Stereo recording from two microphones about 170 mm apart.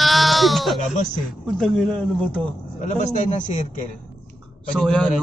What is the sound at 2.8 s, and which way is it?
Speech, 45° left (ahead or behind).